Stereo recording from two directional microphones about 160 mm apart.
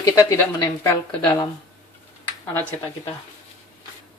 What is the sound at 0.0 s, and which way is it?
A woman's voice, 20° left (ahead or behind).